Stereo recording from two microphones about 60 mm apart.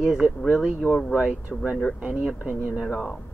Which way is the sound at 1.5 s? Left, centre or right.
Centre.